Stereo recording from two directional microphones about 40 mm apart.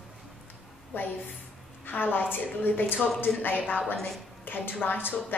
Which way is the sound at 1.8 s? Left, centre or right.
Left.